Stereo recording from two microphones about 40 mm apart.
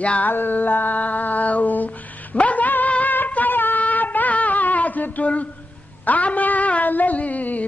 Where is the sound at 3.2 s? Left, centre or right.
Left.